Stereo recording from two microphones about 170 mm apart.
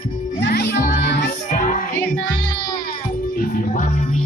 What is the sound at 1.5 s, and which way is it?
Music, 50° left (ahead or behind).